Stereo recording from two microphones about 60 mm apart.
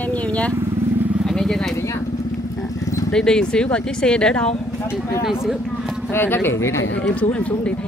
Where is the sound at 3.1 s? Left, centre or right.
Centre.